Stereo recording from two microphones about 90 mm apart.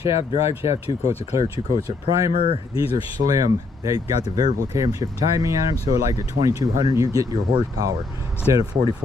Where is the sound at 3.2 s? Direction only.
40° right (ahead or behind).